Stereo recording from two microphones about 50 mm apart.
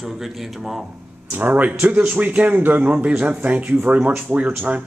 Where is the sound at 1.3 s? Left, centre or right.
Right.